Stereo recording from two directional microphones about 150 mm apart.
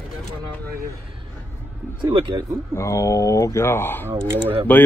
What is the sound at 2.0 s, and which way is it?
Speech, 30° right (ahead or behind).